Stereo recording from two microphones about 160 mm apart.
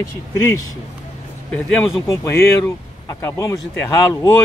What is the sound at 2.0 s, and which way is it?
Speech, 20° left (ahead or behind).